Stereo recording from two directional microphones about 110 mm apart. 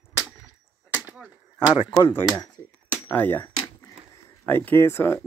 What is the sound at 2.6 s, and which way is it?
Speech, 20° left (ahead or behind).